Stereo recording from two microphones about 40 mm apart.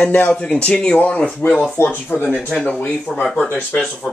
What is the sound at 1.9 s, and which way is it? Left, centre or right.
Speech, left.